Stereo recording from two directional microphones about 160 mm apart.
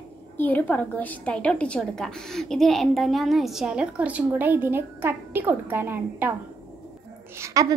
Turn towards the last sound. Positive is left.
turn(degrees=-15)  # may be behind; listen again after turning